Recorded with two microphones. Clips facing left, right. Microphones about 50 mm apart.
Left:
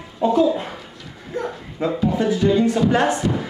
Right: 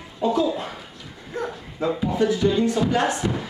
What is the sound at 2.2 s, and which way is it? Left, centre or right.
Speech, left.